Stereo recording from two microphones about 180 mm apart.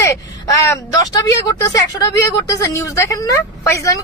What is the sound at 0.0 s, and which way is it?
A man's voice, 15° left (ahead or behind).